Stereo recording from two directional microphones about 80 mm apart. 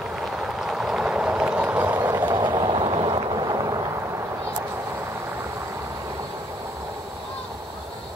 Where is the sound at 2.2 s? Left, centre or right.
Right.